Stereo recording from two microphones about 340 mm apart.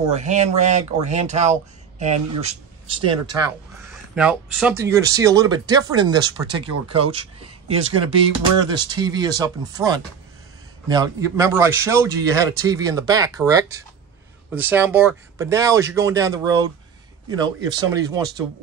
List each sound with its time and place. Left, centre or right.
0.0 s speech: centre
4.1 s speech: centre